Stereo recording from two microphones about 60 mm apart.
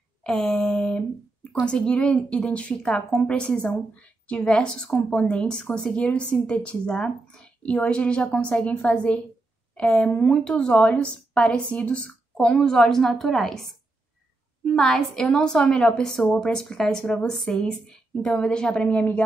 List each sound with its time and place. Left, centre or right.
0.2 s a woman's voice: centre
14.8 s a woman's voice: centre